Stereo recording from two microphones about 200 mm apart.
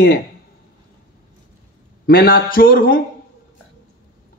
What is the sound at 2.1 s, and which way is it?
Speech, 50° left (ahead or behind).